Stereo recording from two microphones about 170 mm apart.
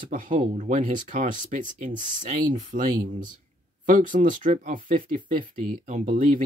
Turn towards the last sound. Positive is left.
turn(degrees=-50)  # may be behind; listen again after turning